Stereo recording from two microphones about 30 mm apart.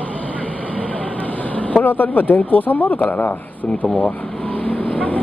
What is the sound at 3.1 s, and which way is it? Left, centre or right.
Speech, left.